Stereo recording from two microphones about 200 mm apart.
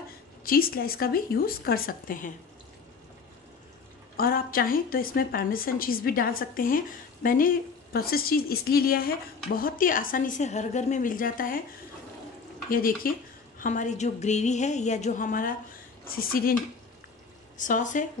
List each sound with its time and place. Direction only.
0.5 s a woman's voice: 45° left (ahead or behind)
4.2 s a woman's voice: 45° left (ahead or behind)
12.6 s a woman's voice: 45° left (ahead or behind)
17.6 s speech: 40° left (ahead or behind)